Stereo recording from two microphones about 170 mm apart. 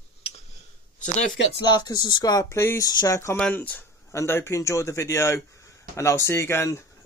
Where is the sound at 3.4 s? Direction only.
5° left (ahead or behind).